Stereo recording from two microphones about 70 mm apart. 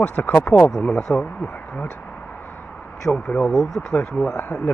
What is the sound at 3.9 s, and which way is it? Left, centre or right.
Speech, left.